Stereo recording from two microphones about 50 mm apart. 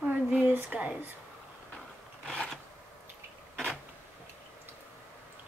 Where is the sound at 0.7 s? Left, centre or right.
Right.